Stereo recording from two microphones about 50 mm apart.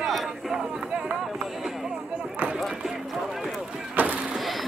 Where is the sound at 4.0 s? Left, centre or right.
Right.